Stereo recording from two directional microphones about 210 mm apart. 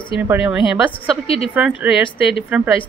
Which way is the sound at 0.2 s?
5° right (ahead or behind).